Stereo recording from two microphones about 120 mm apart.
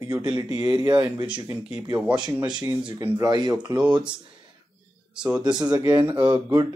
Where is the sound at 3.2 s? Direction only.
35° right (ahead or behind).